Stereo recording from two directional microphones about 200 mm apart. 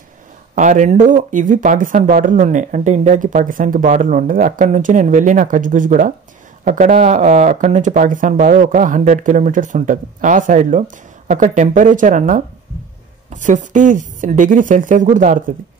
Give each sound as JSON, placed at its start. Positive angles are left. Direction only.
{"t": 0.6, "sound": "speech", "side_deg": -40}